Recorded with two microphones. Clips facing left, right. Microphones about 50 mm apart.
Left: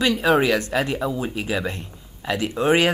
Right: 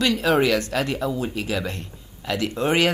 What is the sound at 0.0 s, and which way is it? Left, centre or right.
Speech, centre.